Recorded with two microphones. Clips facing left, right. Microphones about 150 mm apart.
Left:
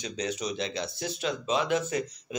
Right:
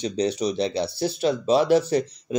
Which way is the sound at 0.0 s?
30° right (ahead or behind).